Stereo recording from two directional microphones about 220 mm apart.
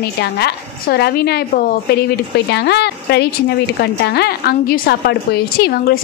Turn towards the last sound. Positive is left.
turn(degrees=45)  # may be behind; listen again after turning